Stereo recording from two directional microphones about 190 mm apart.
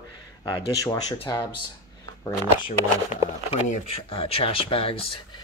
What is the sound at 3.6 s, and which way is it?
Speech, 35° left (ahead or behind).